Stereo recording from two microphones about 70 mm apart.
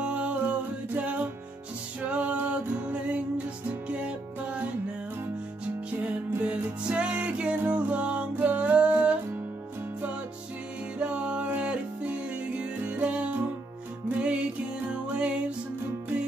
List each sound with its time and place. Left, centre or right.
0.0 s music: centre
5.9 s music: right
11.0 s music: centre